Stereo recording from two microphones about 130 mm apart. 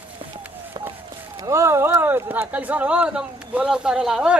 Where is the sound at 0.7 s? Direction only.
35° right (ahead or behind).